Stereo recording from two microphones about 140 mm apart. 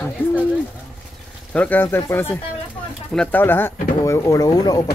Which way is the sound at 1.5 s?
10° left (ahead or behind).